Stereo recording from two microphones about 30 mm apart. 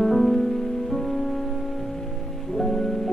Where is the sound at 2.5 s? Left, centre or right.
Centre.